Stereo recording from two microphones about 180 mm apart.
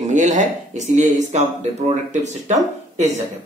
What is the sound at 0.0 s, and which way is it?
Speech, 40° right (ahead or behind).